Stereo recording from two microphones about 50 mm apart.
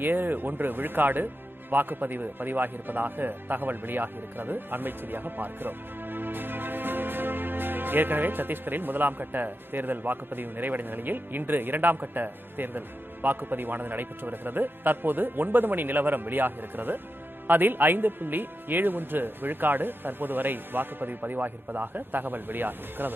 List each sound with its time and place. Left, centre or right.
0.0 s speech: right